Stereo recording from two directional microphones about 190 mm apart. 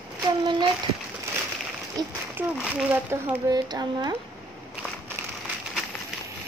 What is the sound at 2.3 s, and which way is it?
Speech, 10° right (ahead or behind).